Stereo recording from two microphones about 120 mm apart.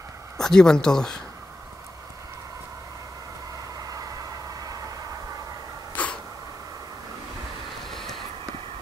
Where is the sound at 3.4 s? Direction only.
30° right (ahead or behind).